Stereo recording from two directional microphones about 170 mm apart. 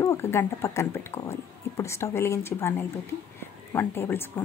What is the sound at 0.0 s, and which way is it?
Speech, 15° left (ahead or behind).